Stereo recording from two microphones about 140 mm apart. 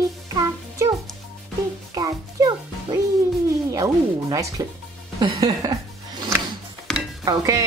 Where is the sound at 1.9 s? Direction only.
25° right (ahead or behind).